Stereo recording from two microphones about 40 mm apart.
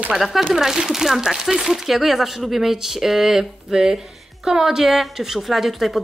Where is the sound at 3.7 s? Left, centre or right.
Centre.